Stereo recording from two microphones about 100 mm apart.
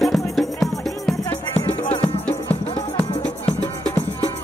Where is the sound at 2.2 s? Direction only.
15° left (ahead or behind).